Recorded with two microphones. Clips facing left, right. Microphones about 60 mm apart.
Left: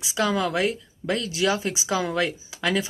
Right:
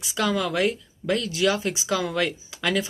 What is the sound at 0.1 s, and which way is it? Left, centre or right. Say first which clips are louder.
Speech: left 1 dB; centre.